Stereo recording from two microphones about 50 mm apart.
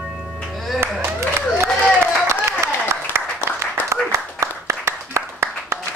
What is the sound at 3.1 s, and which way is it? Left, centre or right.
Applause, right.